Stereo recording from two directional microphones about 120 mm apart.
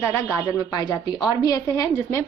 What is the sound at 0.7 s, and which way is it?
A woman's voice, 35° left (ahead or behind).